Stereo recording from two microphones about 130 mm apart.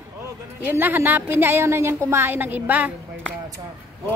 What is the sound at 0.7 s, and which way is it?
A woman's voice, 15° right (ahead or behind).